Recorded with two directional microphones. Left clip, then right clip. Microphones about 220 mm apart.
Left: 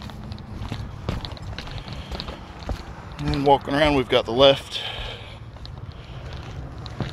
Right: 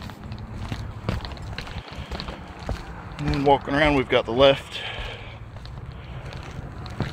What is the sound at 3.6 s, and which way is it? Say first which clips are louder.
Speech: left 1 dB; 10° left (ahead or behind).